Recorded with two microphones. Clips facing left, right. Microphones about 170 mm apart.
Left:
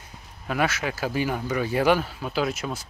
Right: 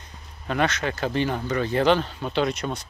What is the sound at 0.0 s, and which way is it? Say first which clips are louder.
Speech: right 1 dB; 5° left (ahead or behind).